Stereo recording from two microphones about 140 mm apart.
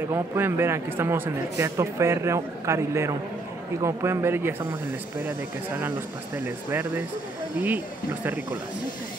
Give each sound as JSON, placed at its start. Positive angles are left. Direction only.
{"t": 0.1, "sound": "a man's voice", "side_deg": -20}
{"t": 5.8, "sound": "speech", "side_deg": -15}